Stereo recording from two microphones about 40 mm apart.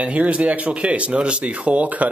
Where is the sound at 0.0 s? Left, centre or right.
Right.